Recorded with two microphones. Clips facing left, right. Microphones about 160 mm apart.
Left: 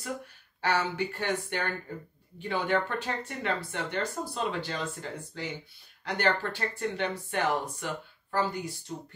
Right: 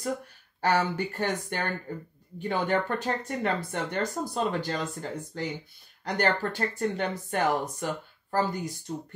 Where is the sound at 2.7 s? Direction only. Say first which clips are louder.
Right 1 dB; 45° right (ahead or behind).